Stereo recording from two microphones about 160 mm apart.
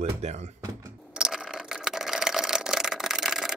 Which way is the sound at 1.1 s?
5° right (ahead or behind).